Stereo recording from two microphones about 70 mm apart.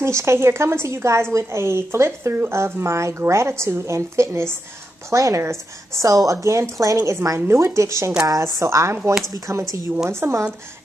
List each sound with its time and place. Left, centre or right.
0.0 s a woman's voice: right
7.3 s a woman's voice: right